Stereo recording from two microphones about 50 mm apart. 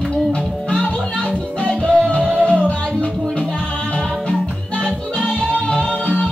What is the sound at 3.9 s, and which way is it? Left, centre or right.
Music, left.